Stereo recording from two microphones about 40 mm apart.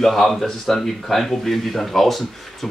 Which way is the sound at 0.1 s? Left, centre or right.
Centre.